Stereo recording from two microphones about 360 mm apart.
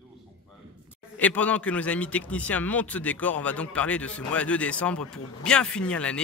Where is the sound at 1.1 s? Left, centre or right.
Centre.